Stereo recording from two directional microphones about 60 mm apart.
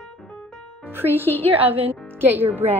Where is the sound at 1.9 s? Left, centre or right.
Right.